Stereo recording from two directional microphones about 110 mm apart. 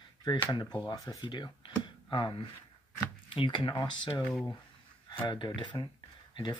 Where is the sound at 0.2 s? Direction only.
40° left (ahead or behind).